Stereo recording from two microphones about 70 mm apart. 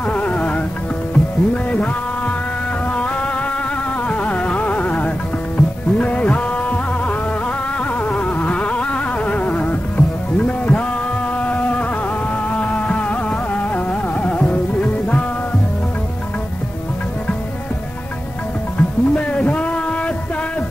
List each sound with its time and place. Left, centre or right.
0.0 s music: centre
8.0 s insect: left
11.3 s a sound: centre
12.4 s music: centre
18.8 s music: centre